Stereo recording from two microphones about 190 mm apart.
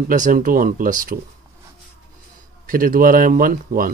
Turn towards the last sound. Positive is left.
turn(degrees=-45)  # may be behind; listen again after turning